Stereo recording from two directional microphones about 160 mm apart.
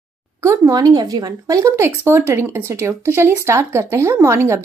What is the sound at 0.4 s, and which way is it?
Speech, 20° right (ahead or behind).